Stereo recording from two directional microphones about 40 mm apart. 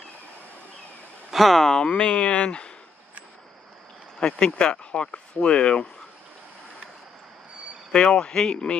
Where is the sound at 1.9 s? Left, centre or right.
Left.